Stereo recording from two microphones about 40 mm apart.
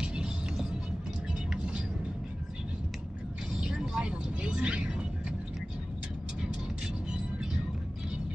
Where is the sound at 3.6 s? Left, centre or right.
Centre.